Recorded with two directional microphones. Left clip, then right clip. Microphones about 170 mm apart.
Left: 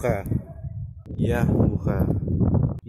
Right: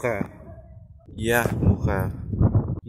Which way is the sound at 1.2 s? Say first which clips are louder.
Right 2 dB; centre (ahead or behind).